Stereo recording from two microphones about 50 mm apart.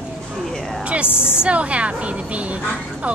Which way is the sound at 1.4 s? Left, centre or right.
Right.